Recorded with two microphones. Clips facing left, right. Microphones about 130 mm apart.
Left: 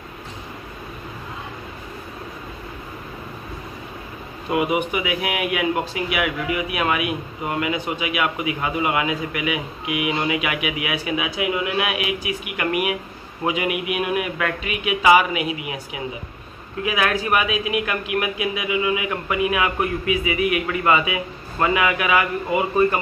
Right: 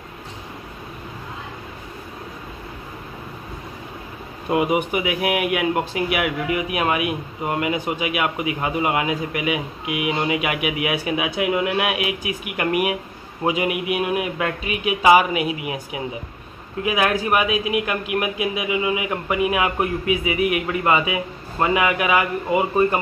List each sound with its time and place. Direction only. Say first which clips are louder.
4.5 s speech: right 1 dB; 40° right (ahead or behind)